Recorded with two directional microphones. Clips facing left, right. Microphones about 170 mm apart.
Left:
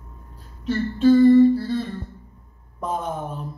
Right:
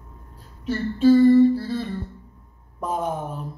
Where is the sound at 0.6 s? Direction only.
5° right (ahead or behind).